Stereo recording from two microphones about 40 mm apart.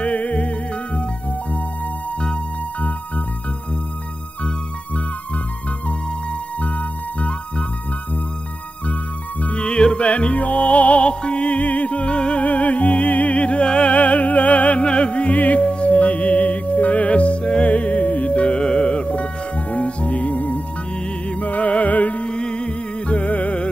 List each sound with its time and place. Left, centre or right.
0.0 s music: left
2.1 s music: left
6.6 s music: left
9.4 s music: left
12.4 s music: left
13.9 s music: left
21.0 s music: left
22.2 s music: left